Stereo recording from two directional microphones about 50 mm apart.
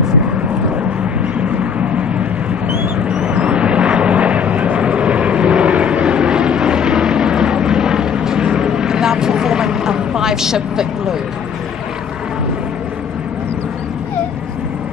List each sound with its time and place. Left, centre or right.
1.6 s vehicle: right